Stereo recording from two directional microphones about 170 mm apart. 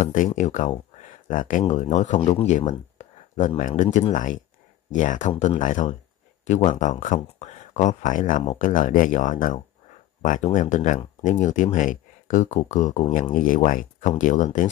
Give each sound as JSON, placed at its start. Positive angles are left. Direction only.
{"t": 0.0, "sound": "speech", "side_deg": 50}